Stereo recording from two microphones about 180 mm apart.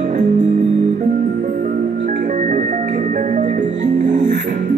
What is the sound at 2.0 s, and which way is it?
Music, 45° right (ahead or behind).